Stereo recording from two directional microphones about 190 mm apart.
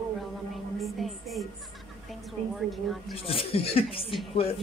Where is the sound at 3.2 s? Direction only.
30° left (ahead or behind).